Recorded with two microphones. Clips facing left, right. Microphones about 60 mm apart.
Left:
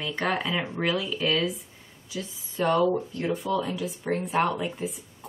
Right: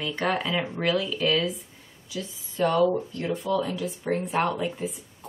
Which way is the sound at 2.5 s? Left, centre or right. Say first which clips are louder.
Right 1 dB; centre.